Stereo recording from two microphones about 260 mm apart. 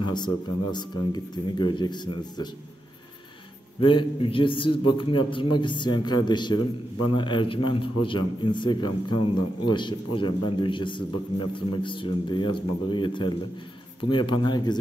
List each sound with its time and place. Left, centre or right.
0.1 s a man's voice: centre
3.8 s a man's voice: centre